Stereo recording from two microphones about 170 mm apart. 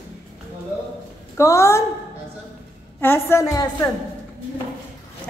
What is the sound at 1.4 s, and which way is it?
Speech, 15° left (ahead or behind).